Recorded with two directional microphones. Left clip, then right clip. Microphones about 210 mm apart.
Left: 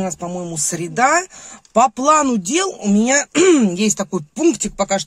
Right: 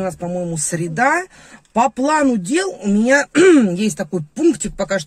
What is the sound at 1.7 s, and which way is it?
Speech, 10° left (ahead or behind).